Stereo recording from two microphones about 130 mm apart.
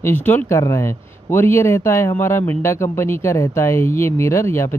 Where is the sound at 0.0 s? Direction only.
15° left (ahead or behind).